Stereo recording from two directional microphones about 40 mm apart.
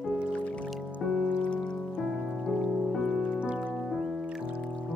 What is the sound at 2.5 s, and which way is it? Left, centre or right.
Music, centre.